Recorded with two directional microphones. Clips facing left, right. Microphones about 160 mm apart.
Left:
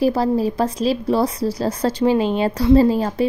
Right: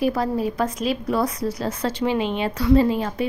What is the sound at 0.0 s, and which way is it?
Speech, 35° left (ahead or behind).